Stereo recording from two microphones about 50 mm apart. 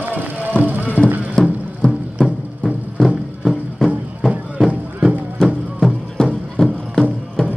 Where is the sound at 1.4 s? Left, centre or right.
Left.